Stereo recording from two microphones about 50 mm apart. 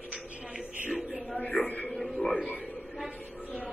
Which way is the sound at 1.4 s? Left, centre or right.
Left.